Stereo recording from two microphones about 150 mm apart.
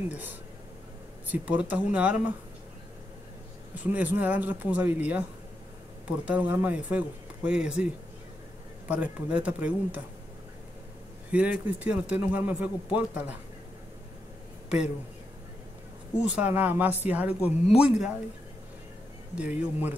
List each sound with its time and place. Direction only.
0.1 s speech: 15° right (ahead or behind)
3.7 s speech: 10° right (ahead or behind)
11.3 s speech: 10° right (ahead or behind)
16.2 s speech: 10° right (ahead or behind)
19.3 s speech: 10° right (ahead or behind)